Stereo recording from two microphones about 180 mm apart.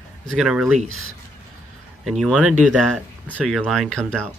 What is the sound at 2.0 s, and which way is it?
Speech, centre (ahead or behind).